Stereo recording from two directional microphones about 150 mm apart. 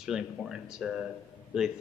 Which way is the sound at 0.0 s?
5° right (ahead or behind).